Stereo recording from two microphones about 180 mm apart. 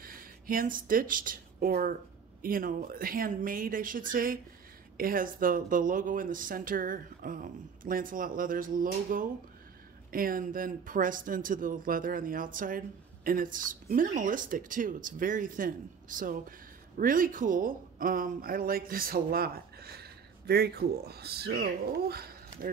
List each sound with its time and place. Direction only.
0.0 s speech: 50° right (ahead or behind)